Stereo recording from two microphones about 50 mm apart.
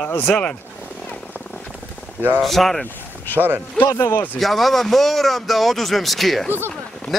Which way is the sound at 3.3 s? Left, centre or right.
Right.